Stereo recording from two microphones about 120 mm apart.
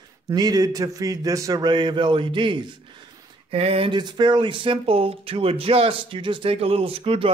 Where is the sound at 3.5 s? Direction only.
55° right (ahead or behind).